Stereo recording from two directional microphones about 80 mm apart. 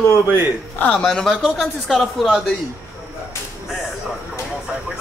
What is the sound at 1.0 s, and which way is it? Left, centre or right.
Speech, centre.